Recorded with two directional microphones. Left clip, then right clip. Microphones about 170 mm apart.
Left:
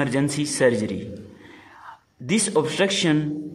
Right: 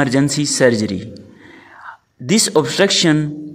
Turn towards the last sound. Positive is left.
turn(degrees=-35)  # may be behind; listen again after turning